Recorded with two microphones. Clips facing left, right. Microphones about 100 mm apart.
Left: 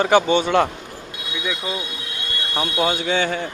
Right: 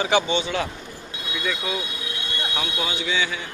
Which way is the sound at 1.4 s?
10° left (ahead or behind).